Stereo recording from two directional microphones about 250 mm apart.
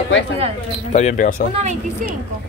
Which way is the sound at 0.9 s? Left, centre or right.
Left.